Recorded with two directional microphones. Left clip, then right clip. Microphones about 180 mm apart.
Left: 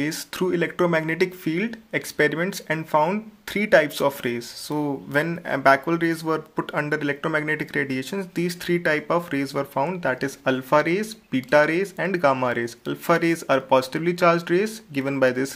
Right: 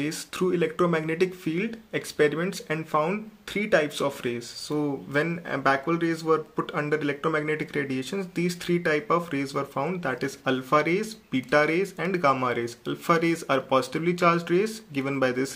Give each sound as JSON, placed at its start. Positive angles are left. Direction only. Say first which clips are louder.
{"t": 0.0, "sound": "speech", "louder": "left 2 dB", "side_deg": 25}